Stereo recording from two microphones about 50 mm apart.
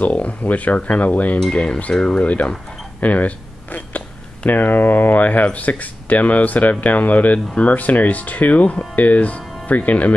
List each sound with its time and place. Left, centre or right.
0.0 s speech: left
2.2 s speech: left